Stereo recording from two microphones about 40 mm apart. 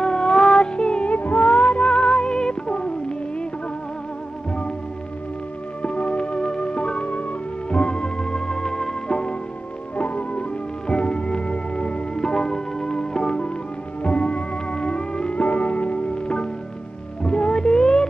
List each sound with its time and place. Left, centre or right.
0.0 s music: centre
1.1 s music: left
5.8 s music: left; by 8.9 s centre
9.9 s music: left
15.3 s music: left